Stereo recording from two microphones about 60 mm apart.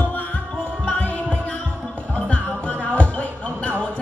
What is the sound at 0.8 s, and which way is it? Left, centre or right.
Heart sounds, left.